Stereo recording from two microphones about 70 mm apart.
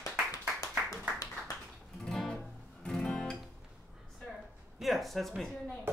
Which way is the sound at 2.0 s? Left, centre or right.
Centre.